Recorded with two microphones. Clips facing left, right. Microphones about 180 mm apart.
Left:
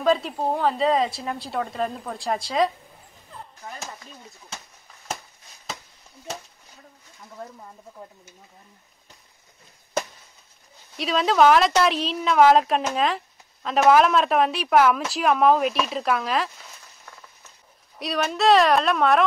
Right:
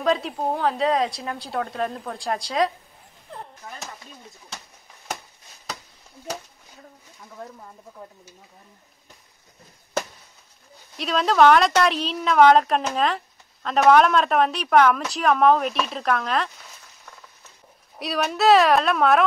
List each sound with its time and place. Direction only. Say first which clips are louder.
0.0 s speech: left 1 dB; centre (ahead or behind)
3.3 s chop: right 4 dB; 70° right (ahead or behind)
11.0 s speech: right 1 dB; centre (ahead or behind)
17.9 s speech: even; centre (ahead or behind)